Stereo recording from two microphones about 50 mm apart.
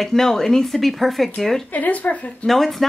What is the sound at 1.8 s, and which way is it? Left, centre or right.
Speech, left.